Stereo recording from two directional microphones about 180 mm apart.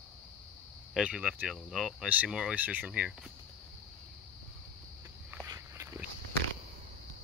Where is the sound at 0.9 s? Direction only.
5° right (ahead or behind).